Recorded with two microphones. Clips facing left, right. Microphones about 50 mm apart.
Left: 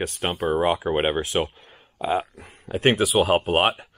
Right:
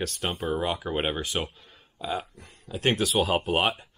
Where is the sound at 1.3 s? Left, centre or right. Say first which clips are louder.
Left 6 dB; left.